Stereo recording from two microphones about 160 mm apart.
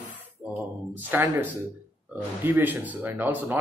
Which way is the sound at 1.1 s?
10° right (ahead or behind).